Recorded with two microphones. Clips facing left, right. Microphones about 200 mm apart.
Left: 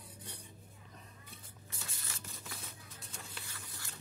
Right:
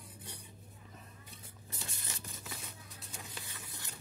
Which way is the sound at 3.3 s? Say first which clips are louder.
Right 2 dB; 20° right (ahead or behind).